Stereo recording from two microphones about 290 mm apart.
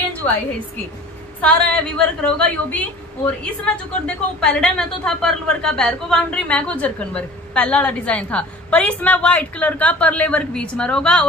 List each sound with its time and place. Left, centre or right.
1.4 s a woman's voice: centre